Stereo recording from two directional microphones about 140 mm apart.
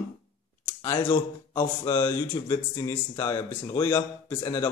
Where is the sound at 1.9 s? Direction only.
20° left (ahead or behind).